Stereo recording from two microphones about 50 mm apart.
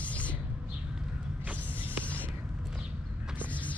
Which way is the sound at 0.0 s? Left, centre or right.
Left.